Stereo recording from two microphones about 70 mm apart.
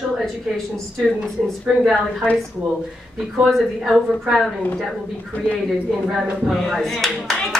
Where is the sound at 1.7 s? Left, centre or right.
Centre.